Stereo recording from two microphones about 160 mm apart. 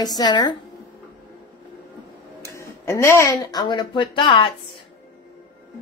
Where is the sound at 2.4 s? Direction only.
15° left (ahead or behind); by 4.5 s 35° left (ahead or behind).